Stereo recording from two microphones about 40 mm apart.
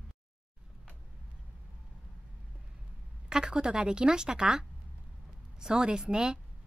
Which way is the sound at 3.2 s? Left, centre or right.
Centre.